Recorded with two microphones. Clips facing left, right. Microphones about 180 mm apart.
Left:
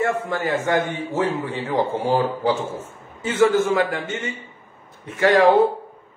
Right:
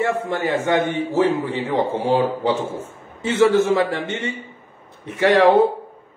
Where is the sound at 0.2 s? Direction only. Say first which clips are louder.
Right 2 dB; 25° right (ahead or behind).